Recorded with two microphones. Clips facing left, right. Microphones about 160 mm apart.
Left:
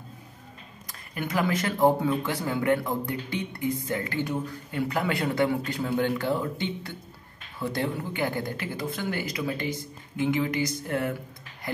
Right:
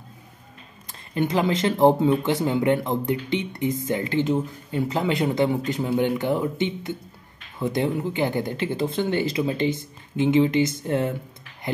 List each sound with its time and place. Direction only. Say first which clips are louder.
1.1 s speech: right 5 dB; 25° right (ahead or behind)